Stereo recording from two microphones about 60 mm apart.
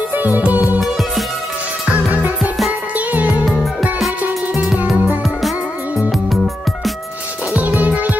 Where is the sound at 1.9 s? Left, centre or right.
Right.